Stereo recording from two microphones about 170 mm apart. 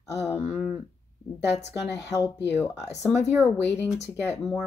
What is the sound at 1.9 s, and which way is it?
Speech, 20° left (ahead or behind).